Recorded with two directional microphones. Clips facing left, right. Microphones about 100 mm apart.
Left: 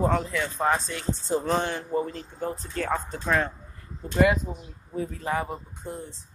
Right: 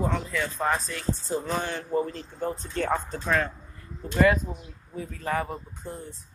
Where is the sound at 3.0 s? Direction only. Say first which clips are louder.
Left 1 dB; 15° left (ahead or behind).